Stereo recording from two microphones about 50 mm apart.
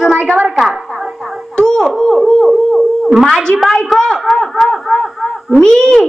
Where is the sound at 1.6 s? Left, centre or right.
Centre.